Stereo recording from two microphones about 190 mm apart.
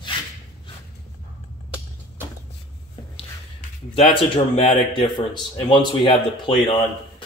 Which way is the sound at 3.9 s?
30° left (ahead or behind).